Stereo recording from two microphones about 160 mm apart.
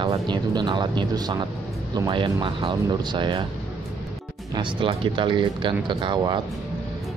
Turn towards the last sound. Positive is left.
turn(degrees=-30)  # may be behind; listen again after turning